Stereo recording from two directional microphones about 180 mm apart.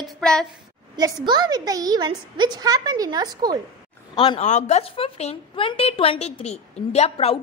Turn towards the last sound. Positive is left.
turn(degrees=35)  # may be behind; listen again after turning